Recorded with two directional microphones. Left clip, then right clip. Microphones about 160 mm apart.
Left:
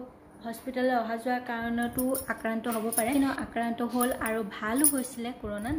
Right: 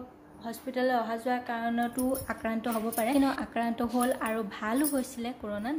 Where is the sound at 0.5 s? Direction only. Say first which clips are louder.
Even; 20° right (ahead or behind).